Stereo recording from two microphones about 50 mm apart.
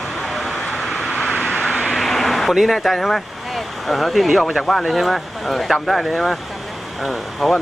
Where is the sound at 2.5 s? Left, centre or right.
Centre.